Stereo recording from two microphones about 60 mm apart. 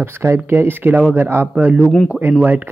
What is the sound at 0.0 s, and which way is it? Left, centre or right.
Speech, right.